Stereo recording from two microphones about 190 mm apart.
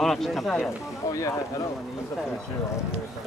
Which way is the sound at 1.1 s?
15° left (ahead or behind).